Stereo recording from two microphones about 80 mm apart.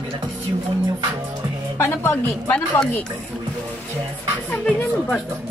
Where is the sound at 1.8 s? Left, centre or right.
Left.